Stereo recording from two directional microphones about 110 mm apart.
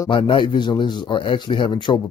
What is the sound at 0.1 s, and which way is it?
Speech, 50° left (ahead or behind).